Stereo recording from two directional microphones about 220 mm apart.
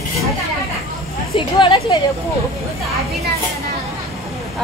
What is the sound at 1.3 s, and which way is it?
Speech, 20° left (ahead or behind).